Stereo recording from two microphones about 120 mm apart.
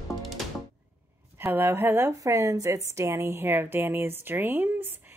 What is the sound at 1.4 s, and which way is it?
Speech, 20° right (ahead or behind).